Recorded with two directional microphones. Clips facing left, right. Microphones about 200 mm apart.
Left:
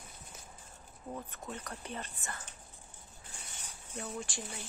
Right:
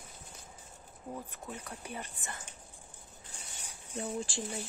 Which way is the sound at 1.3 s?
10° right (ahead or behind).